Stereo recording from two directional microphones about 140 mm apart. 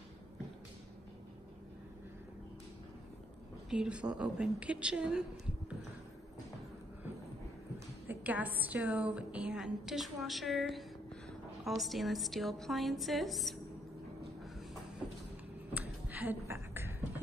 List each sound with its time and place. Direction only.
3.7 s a woman's voice: 5° right (ahead or behind)
8.1 s a woman's voice: 10° right (ahead or behind)
15.7 s a sound: 10° right (ahead or behind)